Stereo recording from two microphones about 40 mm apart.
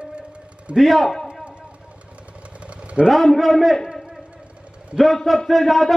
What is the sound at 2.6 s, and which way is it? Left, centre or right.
Vehicle, right.